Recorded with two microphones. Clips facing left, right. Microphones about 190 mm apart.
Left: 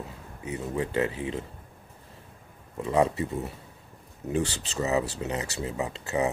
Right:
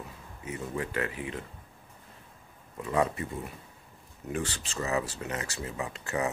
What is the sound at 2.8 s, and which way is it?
Speech, 25° left (ahead or behind).